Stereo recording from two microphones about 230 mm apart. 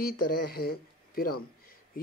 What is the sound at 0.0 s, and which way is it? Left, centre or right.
Speech, left.